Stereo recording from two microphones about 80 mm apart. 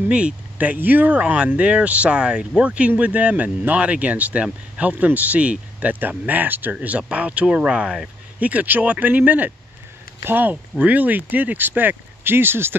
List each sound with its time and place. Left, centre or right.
0.1 s speech: centre